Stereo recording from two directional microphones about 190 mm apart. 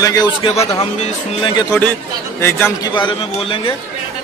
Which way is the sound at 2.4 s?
15° left (ahead or behind).